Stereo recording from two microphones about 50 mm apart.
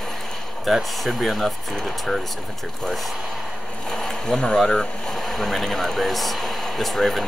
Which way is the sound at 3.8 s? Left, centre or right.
Centre.